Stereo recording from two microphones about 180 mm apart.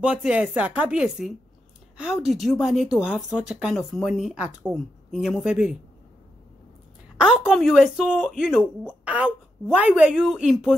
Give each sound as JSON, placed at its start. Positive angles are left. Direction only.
{"t": 0.0, "sound": "speech", "side_deg": -5}
{"t": 7.2, "sound": "speech", "side_deg": 0}